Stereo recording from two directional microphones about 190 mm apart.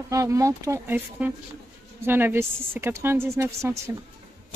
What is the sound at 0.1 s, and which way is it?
A woman's voice, 15° right (ahead or behind).